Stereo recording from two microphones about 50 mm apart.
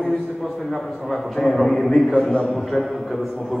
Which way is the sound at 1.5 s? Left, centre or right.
Centre.